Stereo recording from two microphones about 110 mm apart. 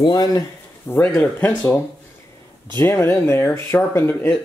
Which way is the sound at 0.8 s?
20° left (ahead or behind).